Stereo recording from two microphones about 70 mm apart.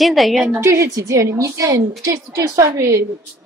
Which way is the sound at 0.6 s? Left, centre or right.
Right.